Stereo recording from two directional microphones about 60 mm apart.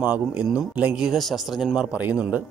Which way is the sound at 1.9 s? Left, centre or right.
Right.